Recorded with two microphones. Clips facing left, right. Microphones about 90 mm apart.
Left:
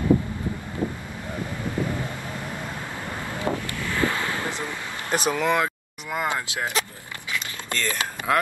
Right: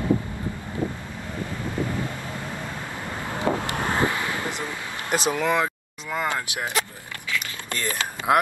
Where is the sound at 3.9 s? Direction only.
20° right (ahead or behind).